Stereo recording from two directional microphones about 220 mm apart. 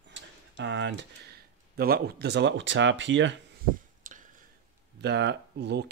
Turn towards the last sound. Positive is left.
turn(degrees=-50)  # may be behind; listen again after turning